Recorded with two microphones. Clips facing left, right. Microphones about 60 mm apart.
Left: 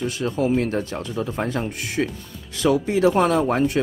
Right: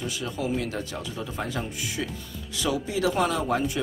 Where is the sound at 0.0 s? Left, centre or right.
Left.